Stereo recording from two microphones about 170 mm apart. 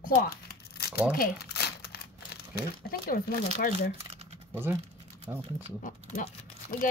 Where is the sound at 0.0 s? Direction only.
60° left (ahead or behind).